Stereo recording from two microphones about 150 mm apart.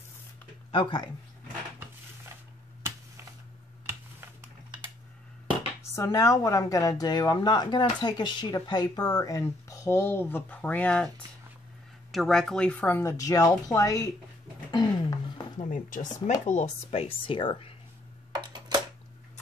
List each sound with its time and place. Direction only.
0.7 s speech: 35° left (ahead or behind)
5.8 s speech: 20° left (ahead or behind)
12.1 s speech: centre (ahead or behind); by 14.1 s 25° left (ahead or behind)
14.7 s a sound: 25° left (ahead or behind)
15.5 s speech: 60° left (ahead or behind); by 17.7 s 35° left (ahead or behind)
18.3 s a sound: 25° right (ahead or behind)